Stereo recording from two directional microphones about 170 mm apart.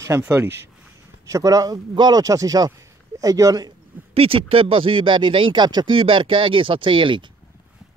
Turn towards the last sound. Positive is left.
turn(degrees=-30)  # may be behind; listen again after turning